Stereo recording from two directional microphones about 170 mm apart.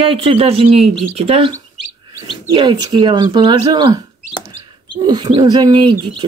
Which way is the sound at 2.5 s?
25° right (ahead or behind).